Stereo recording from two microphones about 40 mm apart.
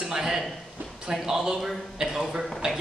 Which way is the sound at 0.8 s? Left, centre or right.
Right.